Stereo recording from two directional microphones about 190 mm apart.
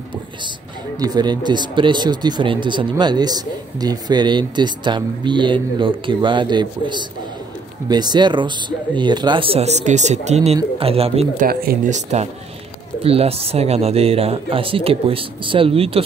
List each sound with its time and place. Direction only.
0.9 s speech: 20° right (ahead or behind)
11.4 s speech: 45° right (ahead or behind); by 16.0 s 30° right (ahead or behind)